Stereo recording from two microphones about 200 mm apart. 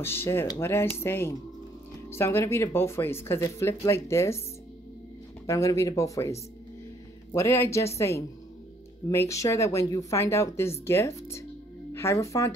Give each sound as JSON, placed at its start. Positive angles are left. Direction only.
{"t": 0.0, "sound": "speech", "side_deg": 10}
{"t": 5.5, "sound": "speech", "side_deg": 15}
{"t": 7.3, "sound": "speech", "side_deg": 15}
{"t": 9.1, "sound": "speech", "side_deg": 15}